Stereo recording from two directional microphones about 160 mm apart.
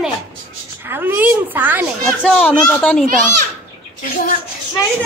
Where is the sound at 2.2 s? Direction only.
Centre (ahead or behind).